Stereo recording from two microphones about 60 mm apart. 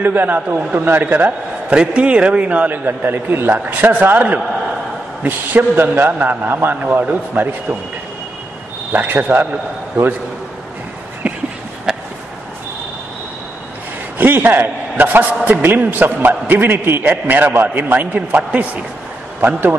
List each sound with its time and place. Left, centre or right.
0.0 s a man's voice: right
0.6 s a man's voice: right
1.7 s a man's voice: centre; by 7.5 s right
8.9 s a man's voice: right
11.2 s a sound: right
14.1 s a man's voice: right